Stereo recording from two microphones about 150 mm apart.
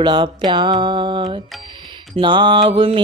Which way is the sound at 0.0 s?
30° right (ahead or behind).